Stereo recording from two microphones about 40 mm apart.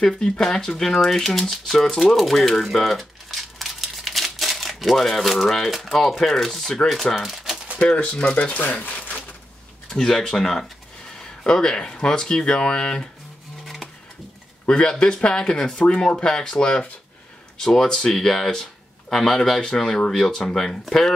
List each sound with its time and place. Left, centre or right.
0.0 s speech: centre
1.9 s typewriter: centre
5.9 s speech: centre
8.0 s speech: left
9.8 s speech: centre
14.7 s speech: left